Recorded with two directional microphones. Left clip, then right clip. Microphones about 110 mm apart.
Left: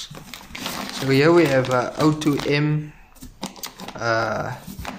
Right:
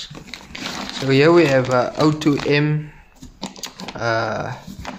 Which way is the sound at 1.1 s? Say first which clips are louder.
Right 3 dB; 30° right (ahead or behind).